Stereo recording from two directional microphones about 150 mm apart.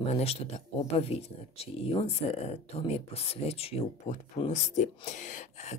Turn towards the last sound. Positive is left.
turn(degrees=50)  # may be behind; listen again after turning